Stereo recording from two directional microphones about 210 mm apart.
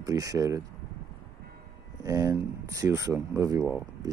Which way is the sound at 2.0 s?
15° right (ahead or behind).